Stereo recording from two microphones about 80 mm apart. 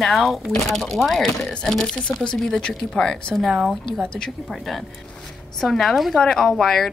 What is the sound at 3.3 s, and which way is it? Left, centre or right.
Speech, centre.